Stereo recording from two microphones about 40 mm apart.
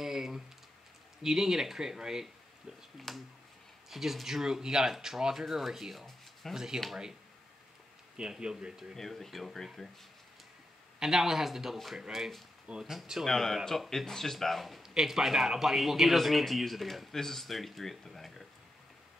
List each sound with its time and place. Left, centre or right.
0.0 s a sound: centre
1.2 s speech: centre
3.1 s speech: centre
3.9 s speech: centre
8.2 s speech: right
8.9 s speech: centre
11.0 s speech: centre
13.2 s speech: centre
14.8 s speech: centre